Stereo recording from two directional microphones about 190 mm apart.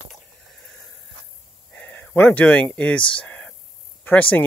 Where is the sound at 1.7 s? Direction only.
10° left (ahead or behind).